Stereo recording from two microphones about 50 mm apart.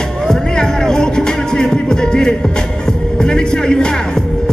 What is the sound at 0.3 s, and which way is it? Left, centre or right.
Music, centre.